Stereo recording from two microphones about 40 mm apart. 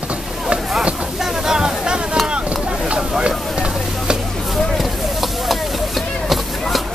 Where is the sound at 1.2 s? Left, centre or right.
Centre.